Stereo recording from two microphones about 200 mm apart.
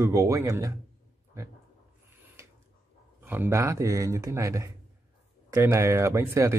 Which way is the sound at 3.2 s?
10° right (ahead or behind).